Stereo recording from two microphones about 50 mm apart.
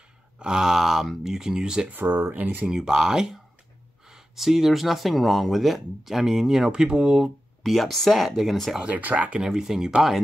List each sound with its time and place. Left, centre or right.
0.4 s speech: centre
1.9 s speech: right
2.3 s speech: right
2.7 s speech: centre
7.6 s speech: centre
8.8 s speech: right
9.4 s speech: centre